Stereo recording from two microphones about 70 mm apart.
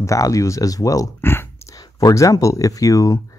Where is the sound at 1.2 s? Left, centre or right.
Left.